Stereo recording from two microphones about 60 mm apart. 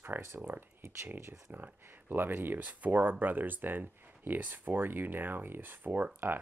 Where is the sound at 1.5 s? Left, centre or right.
Right.